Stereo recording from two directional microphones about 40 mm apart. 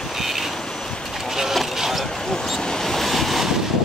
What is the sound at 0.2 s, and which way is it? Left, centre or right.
Vehicle, centre.